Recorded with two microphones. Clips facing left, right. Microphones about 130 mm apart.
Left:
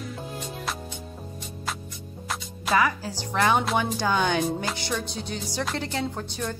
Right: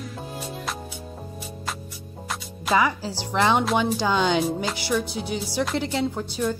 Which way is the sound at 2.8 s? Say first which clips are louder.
Right 1 dB; 15° right (ahead or behind).